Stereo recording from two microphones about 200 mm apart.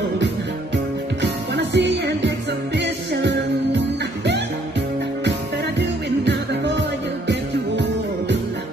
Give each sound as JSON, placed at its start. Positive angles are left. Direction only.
{"t": 1.2, "sound": "music", "side_deg": -60}
{"t": 5.8, "sound": "music", "side_deg": -60}